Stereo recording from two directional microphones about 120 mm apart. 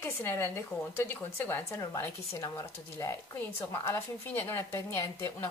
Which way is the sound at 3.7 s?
20° left (ahead or behind).